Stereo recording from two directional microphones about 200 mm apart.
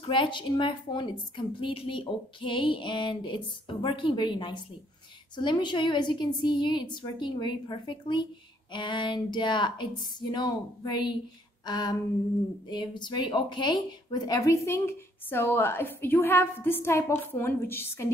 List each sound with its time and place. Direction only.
0.0 s a woman's voice: 25° left (ahead or behind)